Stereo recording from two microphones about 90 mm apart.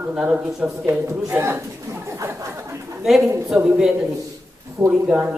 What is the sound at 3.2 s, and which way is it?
Speech, 30° right (ahead or behind).